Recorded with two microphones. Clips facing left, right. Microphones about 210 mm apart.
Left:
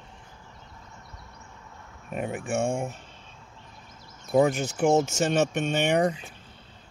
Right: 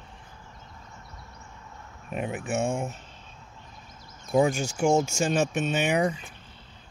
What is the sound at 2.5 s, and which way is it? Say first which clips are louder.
Speech: left 1 dB; 30° left (ahead or behind).